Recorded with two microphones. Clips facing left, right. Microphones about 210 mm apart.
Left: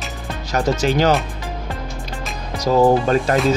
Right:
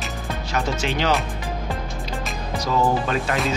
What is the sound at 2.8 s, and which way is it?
Music, 40° left (ahead or behind).